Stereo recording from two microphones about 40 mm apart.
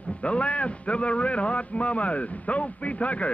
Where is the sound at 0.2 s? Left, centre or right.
Left.